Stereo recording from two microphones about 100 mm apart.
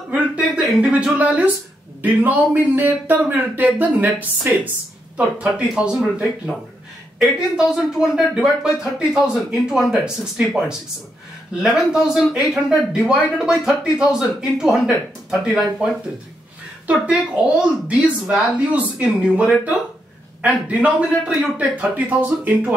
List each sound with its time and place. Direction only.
0.7 s speech: 10° right (ahead or behind)
11.6 s speech: 5° right (ahead or behind)
16.8 s speech: 15° right (ahead or behind)